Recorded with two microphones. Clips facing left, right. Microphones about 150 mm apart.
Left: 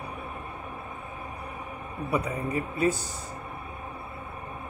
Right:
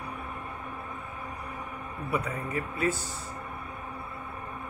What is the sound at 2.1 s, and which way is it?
Speech, 20° left (ahead or behind).